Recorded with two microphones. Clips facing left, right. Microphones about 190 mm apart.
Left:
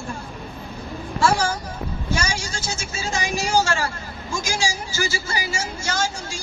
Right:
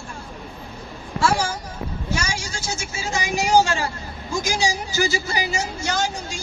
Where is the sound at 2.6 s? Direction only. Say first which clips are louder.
Even; 15° right (ahead or behind).